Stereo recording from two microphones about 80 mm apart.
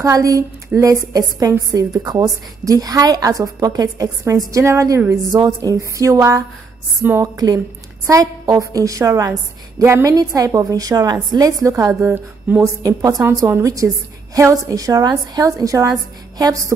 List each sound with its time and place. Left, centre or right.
0.0 s a woman's voice: right
7.0 s a woman's voice: right
7.3 s a woman's voice: right
10.1 s a woman's voice: right
12.0 s speech: right
12.6 s a woman's voice: right